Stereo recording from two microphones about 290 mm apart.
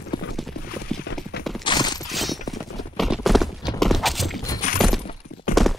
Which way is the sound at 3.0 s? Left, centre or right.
Centre.